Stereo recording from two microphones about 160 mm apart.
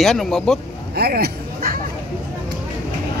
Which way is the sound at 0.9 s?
75° right (ahead or behind).